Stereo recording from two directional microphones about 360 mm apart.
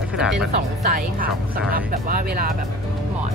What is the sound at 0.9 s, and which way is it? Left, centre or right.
Speech, right.